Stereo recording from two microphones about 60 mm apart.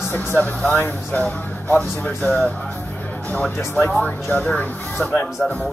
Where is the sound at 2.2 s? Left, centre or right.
Centre.